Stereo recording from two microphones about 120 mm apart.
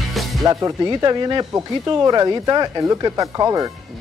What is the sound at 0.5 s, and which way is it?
Speech, 25° right (ahead or behind).